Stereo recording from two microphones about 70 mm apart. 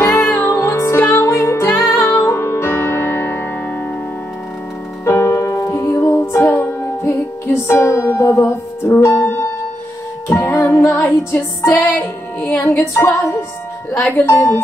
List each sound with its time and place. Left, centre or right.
0.0 s music: left
5.0 s music: left
11.8 s music: left
12.9 s music: left